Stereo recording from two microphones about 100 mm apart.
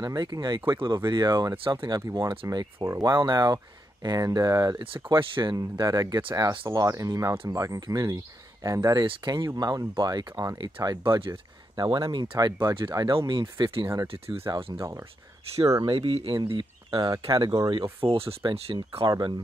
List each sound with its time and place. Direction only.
0.0 s speech: 40° right (ahead or behind)
2.8 s speech: 25° right (ahead or behind)
3.1 s speech: 45° right (ahead or behind)
5.1 s speech: 55° right (ahead or behind)
5.8 s speech: 40° right (ahead or behind)
9.0 s speech: 50° right (ahead or behind)
12.4 s speech: 45° right (ahead or behind)
14.0 s speech: 75° right (ahead or behind)
14.8 s speech: 35° right (ahead or behind)
15.8 s speech: 65° right (ahead or behind)
16.3 s speech: 55° right (ahead or behind)
18.0 s speech: 70° right (ahead or behind)
19.0 s speech: 45° right (ahead or behind)